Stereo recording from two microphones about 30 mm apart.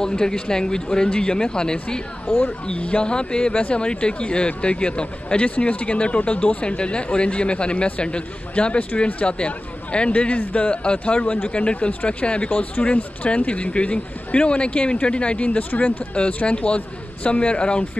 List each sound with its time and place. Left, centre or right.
0.0 s speech: left
2.6 s speech: left
3.0 s speech: left
5.7 s speech: left
6.8 s speech: left
10.1 s speech: left
10.8 s speech: left
12.2 s speech: left
16.4 s speech: left